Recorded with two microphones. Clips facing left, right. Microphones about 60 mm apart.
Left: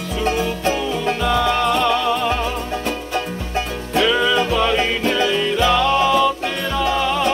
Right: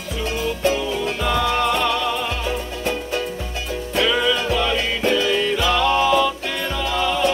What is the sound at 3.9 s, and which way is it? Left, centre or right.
Music, centre.